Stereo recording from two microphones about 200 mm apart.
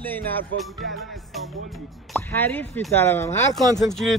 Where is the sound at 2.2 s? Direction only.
10° left (ahead or behind).